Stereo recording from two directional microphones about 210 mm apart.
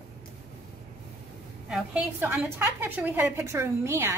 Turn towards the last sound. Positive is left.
turn(degrees=-10)  # may be behind; listen again after turning